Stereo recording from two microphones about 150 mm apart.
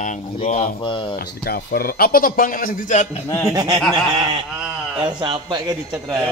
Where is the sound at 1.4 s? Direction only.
90° left; by 3.1 s 60° left (ahead or behind).